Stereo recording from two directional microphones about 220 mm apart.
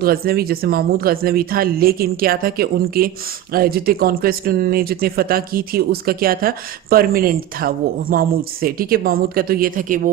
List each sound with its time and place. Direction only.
0.0 s speech: 45° right (ahead or behind)